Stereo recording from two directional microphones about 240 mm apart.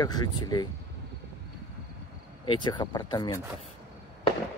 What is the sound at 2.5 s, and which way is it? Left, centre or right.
Speech, centre.